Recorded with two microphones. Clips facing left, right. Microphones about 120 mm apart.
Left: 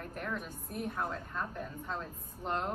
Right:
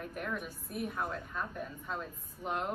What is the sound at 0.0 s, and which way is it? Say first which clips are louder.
A woman's voice: right 1 dB; 5° right (ahead or behind).